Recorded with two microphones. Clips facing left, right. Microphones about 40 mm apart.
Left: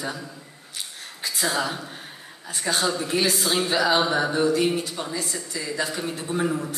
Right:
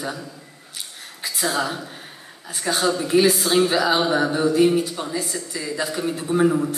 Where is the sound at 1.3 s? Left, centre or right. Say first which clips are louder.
Right 2 dB; centre.